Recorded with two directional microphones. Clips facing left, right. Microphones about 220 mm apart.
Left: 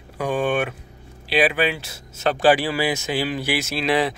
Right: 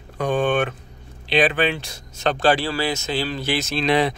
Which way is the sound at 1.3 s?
5° left (ahead or behind).